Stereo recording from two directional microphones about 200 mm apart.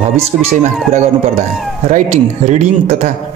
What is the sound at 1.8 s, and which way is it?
Speech, 35° right (ahead or behind).